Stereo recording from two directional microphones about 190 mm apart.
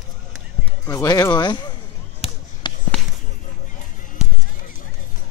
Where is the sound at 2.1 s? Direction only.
35° left (ahead or behind).